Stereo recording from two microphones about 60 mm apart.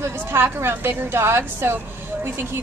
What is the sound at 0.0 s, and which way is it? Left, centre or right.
A woman's voice, right.